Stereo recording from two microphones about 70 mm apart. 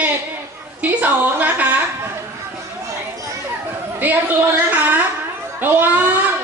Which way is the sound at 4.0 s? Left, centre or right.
Right.